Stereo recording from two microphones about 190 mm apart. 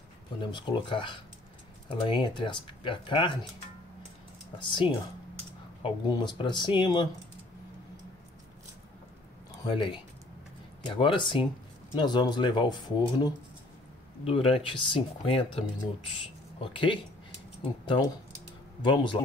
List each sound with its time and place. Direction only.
0.4 s speech: 25° left (ahead or behind)
4.6 s speech: 25° left (ahead or behind)
9.6 s speech: 25° left (ahead or behind)